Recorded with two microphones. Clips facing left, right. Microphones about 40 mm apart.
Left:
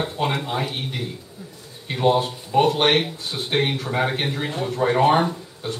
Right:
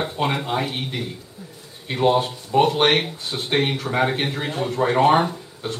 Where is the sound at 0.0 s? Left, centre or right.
Centre.